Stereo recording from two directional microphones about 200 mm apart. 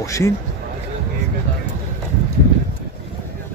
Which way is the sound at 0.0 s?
15° left (ahead or behind).